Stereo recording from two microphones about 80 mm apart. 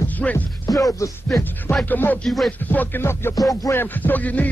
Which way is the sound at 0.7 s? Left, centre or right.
Left.